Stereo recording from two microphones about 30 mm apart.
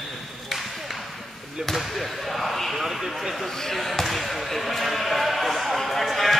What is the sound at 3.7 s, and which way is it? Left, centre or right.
Basketball bounce, centre.